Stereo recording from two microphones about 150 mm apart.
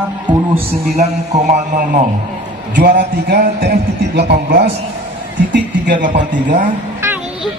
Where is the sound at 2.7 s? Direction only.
90° right.